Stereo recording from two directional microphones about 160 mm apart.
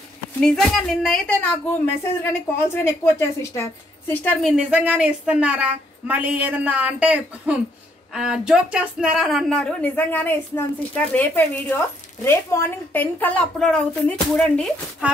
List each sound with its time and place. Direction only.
0.4 s speech: 5° left (ahead or behind)
2.7 s a woman's voice: 15° left (ahead or behind)
4.5 s a woman's voice: 10° right (ahead or behind)